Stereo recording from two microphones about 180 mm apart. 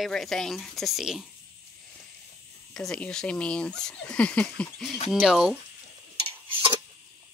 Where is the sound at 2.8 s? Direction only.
5° left (ahead or behind).